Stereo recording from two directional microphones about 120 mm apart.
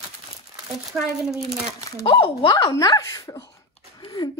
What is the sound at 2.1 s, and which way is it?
Speech, 45° left (ahead or behind).